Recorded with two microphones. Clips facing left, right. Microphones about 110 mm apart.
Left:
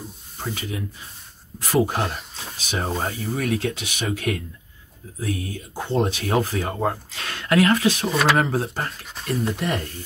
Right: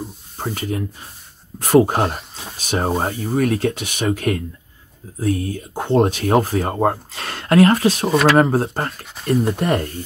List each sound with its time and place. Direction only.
0.4 s speech: 45° right (ahead or behind)
5.8 s speech: 60° right (ahead or behind); by 8.1 s 40° right (ahead or behind)
8.1 s speech: centre (ahead or behind)
8.4 s speech: 40° right (ahead or behind)